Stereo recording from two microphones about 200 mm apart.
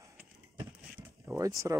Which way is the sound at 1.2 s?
15° right (ahead or behind).